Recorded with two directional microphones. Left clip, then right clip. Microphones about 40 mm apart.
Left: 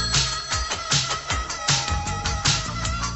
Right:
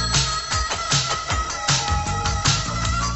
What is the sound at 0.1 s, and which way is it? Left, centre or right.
Music, centre.